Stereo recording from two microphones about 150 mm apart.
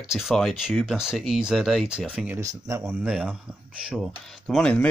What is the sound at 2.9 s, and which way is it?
Speech, 5° right (ahead or behind).